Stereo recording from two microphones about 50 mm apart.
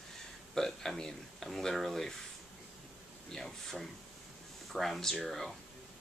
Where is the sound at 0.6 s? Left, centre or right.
Centre.